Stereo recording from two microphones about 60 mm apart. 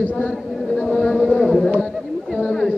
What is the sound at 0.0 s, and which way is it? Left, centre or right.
Speech, left.